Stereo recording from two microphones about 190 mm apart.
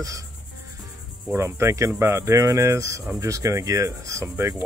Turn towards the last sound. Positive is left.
turn(degrees=-15)  # may be behind; listen again after turning